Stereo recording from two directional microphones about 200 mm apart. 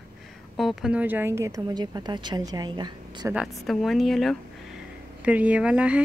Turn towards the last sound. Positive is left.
turn(degrees=-5)  # may be behind; listen again after turning